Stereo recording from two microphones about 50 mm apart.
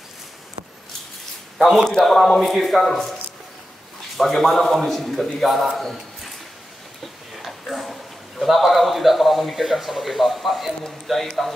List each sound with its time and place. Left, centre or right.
1.6 s a man's voice: centre
4.2 s a man's voice: centre
7.4 s a man's voice: centre